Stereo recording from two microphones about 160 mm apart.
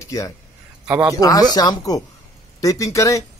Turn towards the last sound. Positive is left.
turn(degrees=20)  # may be behind; listen again after turning